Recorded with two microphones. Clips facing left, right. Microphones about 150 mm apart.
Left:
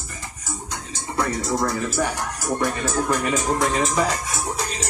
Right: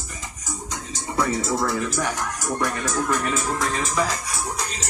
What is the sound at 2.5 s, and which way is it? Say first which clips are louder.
Speech: left 3 dB; 10° left (ahead or behind).